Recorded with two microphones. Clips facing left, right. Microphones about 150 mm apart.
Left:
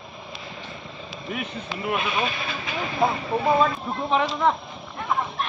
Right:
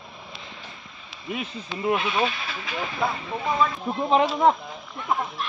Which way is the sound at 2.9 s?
30° left (ahead or behind).